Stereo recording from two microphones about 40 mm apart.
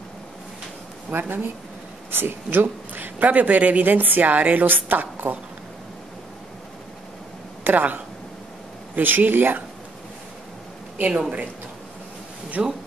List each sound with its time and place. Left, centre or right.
1.1 s speech: right
2.9 s a woman's voice: right
7.6 s a woman's voice: right
11.1 s speech: right
12.6 s speech: right